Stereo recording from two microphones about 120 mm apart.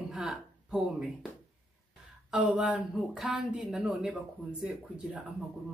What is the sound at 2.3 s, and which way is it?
Speech, 5° right (ahead or behind).